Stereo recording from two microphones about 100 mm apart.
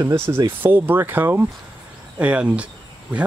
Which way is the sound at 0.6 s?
20° right (ahead or behind).